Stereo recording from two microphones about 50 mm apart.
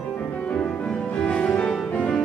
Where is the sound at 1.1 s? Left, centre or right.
Centre.